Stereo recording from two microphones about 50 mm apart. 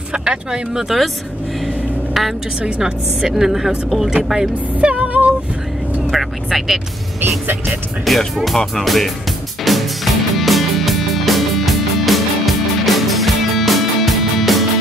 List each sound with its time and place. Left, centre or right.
0.1 s speech: centre
2.6 s speech: centre
4.7 s music: right
6.1 s vehicle: centre
7.6 s speech: centre
9.7 s music: centre